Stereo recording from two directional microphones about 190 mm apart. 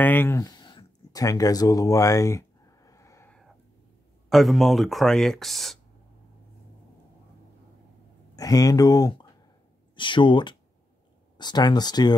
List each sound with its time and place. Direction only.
0.0 s a sound: 10° left (ahead or behind)
4.3 s speech: centre (ahead or behind)
8.4 s speech: 20° left (ahead or behind)